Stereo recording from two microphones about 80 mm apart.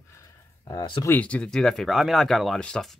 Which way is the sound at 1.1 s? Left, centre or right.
Centre.